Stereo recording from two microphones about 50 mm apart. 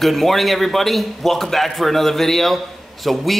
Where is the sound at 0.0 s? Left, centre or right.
Centre.